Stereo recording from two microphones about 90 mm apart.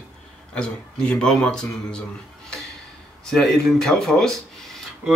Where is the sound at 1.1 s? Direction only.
10° left (ahead or behind).